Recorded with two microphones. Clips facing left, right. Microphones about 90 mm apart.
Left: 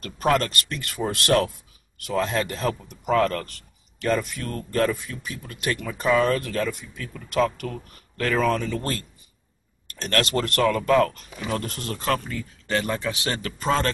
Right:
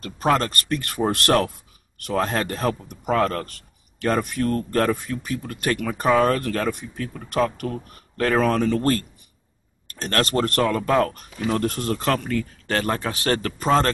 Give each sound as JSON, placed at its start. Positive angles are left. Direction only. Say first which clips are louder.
{"t": 0.0, "sound": "speech", "louder": "right 1 dB", "side_deg": -30}
{"t": 6.0, "sound": "speech", "louder": "right 2 dB", "side_deg": -40}
{"t": 12.6, "sound": "speech", "louder": "left 1 dB", "side_deg": -50}